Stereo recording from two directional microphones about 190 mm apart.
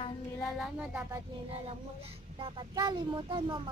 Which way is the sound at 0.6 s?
Centre (ahead or behind).